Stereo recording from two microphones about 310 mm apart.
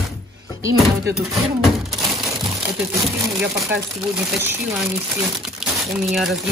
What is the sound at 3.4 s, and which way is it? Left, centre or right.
Speech, centre.